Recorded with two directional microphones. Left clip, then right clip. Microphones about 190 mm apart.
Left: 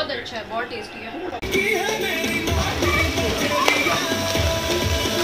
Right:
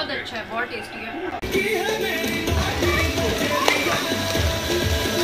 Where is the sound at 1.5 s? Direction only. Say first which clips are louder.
Left 2 dB; 35° left (ahead or behind).